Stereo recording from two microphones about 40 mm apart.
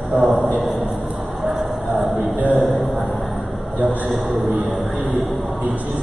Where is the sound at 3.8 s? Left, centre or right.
Right.